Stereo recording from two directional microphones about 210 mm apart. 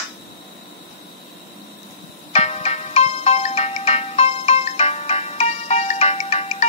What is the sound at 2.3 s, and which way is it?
Ringtone, 30° left (ahead or behind).